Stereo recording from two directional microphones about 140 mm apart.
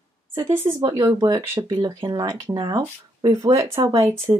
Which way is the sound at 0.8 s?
25° right (ahead or behind).